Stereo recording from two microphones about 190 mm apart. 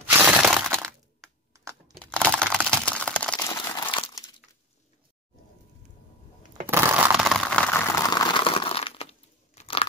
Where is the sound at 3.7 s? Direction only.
25° left (ahead or behind).